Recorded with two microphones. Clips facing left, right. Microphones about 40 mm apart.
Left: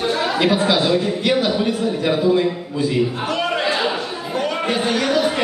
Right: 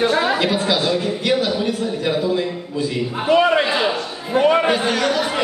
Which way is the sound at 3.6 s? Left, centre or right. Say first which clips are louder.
Right 1 dB; centre.